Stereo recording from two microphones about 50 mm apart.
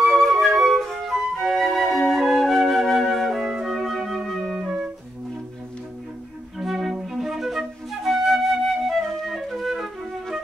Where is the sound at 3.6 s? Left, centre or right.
Centre.